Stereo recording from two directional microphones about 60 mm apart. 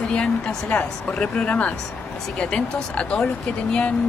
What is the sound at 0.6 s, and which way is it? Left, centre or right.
Speech, left.